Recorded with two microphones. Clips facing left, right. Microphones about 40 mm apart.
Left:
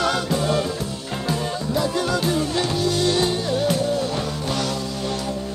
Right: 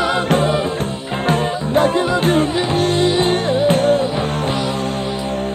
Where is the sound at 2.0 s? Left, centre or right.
Right.